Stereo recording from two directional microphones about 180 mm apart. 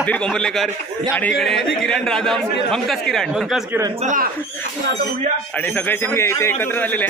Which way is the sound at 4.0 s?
45° right (ahead or behind).